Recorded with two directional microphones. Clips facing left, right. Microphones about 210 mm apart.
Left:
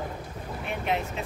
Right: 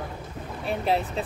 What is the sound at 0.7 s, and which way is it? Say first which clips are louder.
Vehicle: right 4 dB; 35° right (ahead or behind).